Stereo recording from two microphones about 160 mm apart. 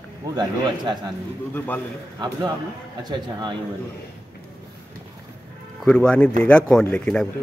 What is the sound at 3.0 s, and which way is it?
Speech, 25° right (ahead or behind).